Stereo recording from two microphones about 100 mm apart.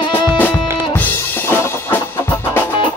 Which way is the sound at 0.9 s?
20° left (ahead or behind).